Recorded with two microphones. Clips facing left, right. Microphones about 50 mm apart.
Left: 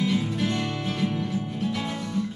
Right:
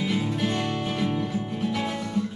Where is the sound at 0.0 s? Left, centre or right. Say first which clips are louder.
Left 1 dB; centre.